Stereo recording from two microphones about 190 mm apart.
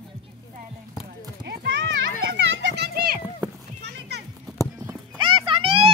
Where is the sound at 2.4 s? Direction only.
70° right (ahead or behind); by 3.2 s 55° right (ahead or behind).